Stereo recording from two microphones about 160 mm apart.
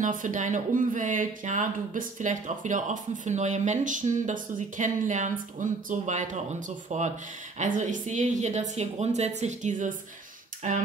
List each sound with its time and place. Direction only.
0.0 s speech: 55° right (ahead or behind)